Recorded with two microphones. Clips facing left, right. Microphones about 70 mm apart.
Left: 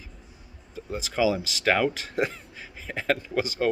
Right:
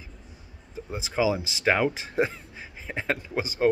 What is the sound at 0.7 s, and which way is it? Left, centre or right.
Speech, right.